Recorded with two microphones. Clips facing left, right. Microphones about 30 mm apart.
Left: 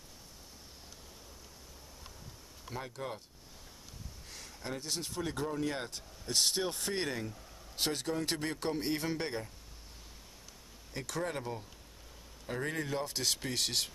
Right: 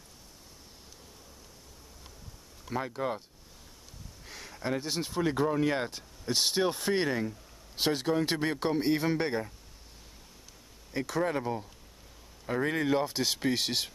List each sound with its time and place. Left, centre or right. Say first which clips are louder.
2.7 s speech: right 8 dB; right
4.3 s a sound: right 8 dB; centre
5.5 s speech: right 7 dB; right
5.9 s speech: right 6 dB; right
10.9 s speech: right 7 dB; centre
12.5 s speech: right 8 dB; right
13.0 s speech: right 6 dB; centre